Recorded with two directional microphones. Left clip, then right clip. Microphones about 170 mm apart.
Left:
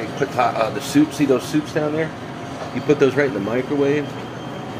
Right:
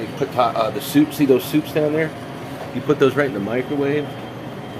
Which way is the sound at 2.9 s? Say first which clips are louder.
Right 1 dB; 10° right (ahead or behind).